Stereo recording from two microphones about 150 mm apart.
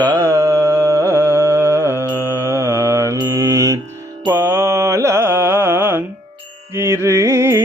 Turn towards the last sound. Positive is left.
turn(degrees=-15)  # may be behind; listen again after turning